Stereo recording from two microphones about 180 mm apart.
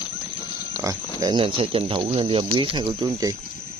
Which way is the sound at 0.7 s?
20° right (ahead or behind).